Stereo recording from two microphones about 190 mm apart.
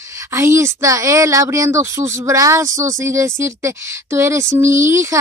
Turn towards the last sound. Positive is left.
turn(degrees=-15)  # may be behind; listen again after turning